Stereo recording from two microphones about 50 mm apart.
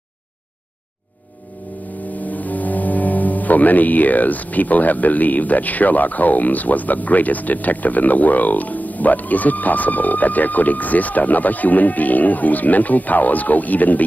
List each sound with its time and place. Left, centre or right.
2.2 s speech: left